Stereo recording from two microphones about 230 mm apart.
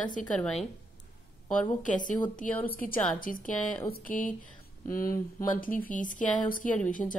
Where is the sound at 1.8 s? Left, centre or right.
Left.